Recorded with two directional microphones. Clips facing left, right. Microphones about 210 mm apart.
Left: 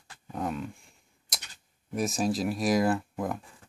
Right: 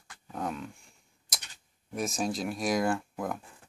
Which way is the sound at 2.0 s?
Centre (ahead or behind).